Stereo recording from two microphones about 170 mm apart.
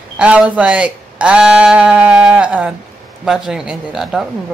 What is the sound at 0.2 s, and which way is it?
A woman's voice, 5° right (ahead or behind).